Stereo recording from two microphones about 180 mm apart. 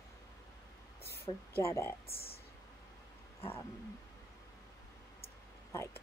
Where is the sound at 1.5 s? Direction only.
15° left (ahead or behind).